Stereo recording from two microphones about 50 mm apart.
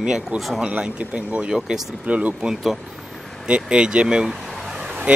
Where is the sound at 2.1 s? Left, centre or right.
Right.